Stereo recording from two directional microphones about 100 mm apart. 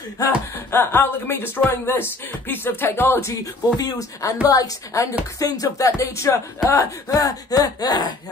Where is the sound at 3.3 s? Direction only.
40° left (ahead or behind).